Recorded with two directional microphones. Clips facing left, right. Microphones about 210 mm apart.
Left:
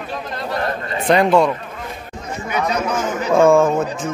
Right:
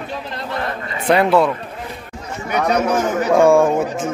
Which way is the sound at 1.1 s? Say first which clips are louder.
Even; 5° right (ahead or behind).